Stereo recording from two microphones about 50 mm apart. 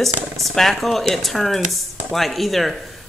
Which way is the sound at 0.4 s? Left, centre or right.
Centre.